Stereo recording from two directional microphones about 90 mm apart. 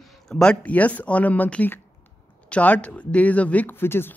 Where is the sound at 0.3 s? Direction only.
10° left (ahead or behind).